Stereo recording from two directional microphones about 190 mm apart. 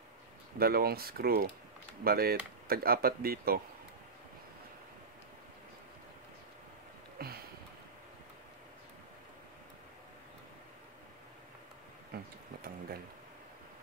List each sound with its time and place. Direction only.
0.6 s speech: 55° right (ahead or behind)
7.2 s a sound: 55° right (ahead or behind)
12.1 s music: 55° right (ahead or behind)